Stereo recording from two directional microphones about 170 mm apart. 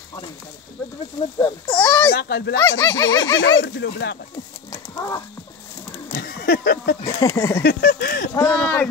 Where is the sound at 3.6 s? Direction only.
90° left.